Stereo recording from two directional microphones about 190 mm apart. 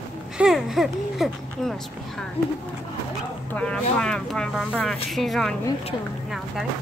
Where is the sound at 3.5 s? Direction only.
5° left (ahead or behind).